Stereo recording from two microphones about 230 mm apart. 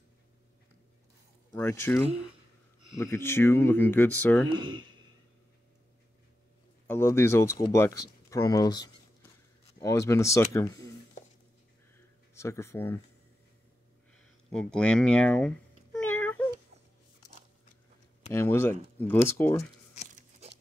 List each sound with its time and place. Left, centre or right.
1.5 s speech: centre
3.0 s speech: centre
4.5 s speech: centre
6.9 s speech: centre
12.4 s speech: centre
14.5 s cat: centre
18.3 s speech: centre
20.1 s crunch: right